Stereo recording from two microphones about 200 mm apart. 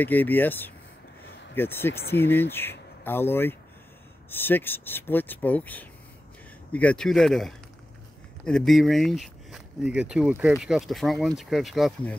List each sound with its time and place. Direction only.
0.0 s speech: 10° left (ahead or behind)
2.0 s speech: 50° left (ahead or behind)
2.2 s speech: 10° left (ahead or behind)